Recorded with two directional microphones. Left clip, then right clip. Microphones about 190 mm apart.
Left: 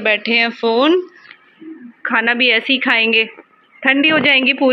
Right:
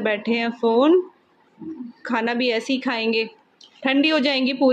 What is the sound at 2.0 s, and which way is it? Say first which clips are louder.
A woman's voice: left 8 dB; 10° right (ahead or behind).